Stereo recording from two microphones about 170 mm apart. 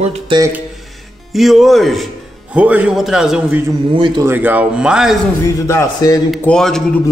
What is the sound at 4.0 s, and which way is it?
Speech, 30° right (ahead or behind).